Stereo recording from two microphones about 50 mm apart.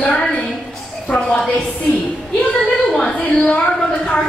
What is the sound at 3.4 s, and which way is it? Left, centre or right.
Speech, centre.